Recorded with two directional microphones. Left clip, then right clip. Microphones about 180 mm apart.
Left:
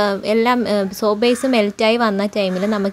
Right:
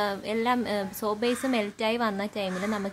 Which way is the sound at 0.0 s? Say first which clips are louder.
Left 11 dB; 30° left (ahead or behind).